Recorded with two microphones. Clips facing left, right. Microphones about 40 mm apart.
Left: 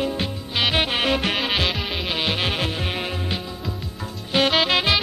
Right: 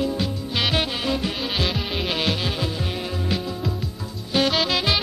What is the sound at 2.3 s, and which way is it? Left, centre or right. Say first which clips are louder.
Music: left 2 dB; left.